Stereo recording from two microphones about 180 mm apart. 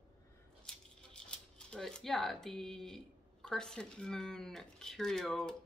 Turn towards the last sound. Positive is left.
turn(degrees=5)  # may be behind; listen again after turning